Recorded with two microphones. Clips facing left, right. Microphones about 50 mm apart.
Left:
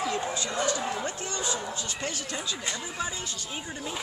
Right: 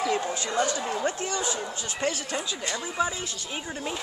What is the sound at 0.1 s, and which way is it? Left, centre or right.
Speech, right.